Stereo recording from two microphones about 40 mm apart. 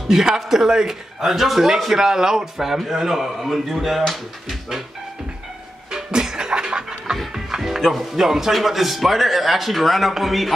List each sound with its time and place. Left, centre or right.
0.1 s a man's voice: centre
5.9 s music: centre
7.8 s a man's voice: centre